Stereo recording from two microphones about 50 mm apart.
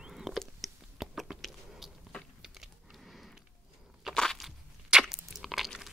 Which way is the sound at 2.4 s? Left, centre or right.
Centre.